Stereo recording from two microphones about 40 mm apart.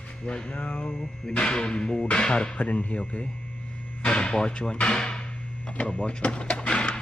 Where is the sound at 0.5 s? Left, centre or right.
Left.